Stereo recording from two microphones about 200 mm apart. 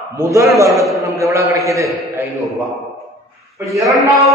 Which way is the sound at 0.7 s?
Centre (ahead or behind).